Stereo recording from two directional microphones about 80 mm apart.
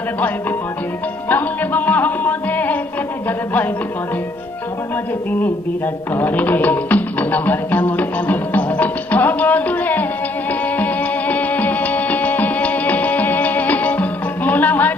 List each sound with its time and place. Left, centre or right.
1.3 s music: left
6.1 s music: left